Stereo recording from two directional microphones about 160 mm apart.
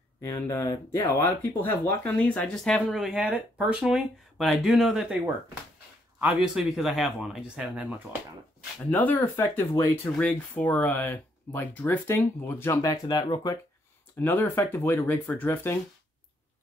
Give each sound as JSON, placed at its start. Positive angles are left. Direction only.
{"t": 0.2, "sound": "speech", "side_deg": 20}
{"t": 6.2, "sound": "speech", "side_deg": -5}
{"t": 8.9, "sound": "speech", "side_deg": 10}
{"t": 14.2, "sound": "speech", "side_deg": 15}